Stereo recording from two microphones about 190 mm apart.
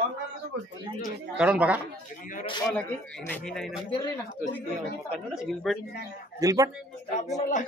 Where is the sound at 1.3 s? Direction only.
5° right (ahead or behind).